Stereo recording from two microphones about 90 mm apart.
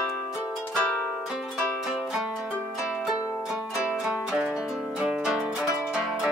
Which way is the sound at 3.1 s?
40° left (ahead or behind).